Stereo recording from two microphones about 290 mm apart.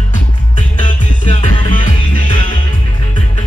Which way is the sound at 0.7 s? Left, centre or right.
Centre.